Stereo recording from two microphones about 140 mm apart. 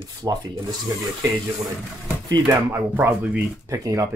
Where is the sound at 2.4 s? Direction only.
15° right (ahead or behind).